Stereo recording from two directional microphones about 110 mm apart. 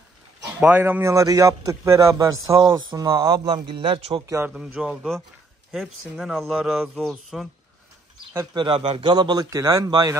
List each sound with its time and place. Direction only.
0.6 s speech: 15° right (ahead or behind)
1.1 s a man's voice: 30° right (ahead or behind); by 4.2 s 55° right (ahead or behind)
4.6 s speech: 10° right (ahead or behind)
8.5 s a man's voice: 50° right (ahead or behind)